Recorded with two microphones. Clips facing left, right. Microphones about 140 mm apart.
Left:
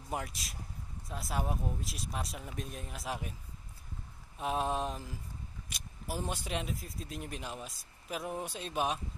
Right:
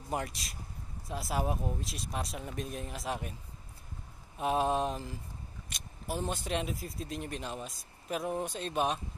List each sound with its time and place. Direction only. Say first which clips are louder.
0.1 s speech: right 3 dB; centre (ahead or behind)
4.4 s speech: right 4 dB; centre (ahead or behind)